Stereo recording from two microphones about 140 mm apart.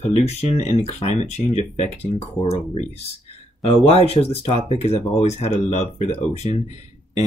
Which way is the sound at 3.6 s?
45° left (ahead or behind).